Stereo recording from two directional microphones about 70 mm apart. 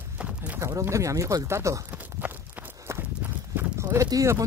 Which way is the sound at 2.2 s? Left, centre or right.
Right.